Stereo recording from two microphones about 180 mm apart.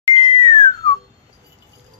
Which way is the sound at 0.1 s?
30° left (ahead or behind).